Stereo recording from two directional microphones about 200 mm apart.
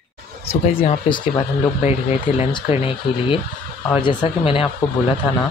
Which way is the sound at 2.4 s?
25° left (ahead or behind).